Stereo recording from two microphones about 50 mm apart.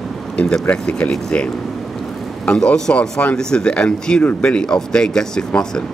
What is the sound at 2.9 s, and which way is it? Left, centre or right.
Speech, left.